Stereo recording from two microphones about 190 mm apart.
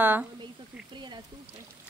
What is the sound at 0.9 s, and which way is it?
Speech, 25° right (ahead or behind).